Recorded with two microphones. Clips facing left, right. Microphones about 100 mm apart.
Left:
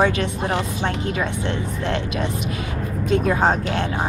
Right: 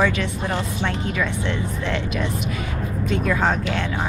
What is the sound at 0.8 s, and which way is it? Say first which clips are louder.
A woman's voice: left 1 dB; 45° left (ahead or behind).